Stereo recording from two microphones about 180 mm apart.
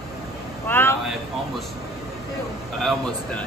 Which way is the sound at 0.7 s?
10° left (ahead or behind).